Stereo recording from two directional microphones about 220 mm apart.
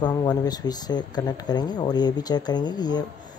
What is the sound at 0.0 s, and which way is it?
Speech, 20° left (ahead or behind).